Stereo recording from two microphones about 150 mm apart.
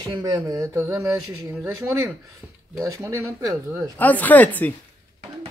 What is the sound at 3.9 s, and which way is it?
Speech, 10° left (ahead or behind).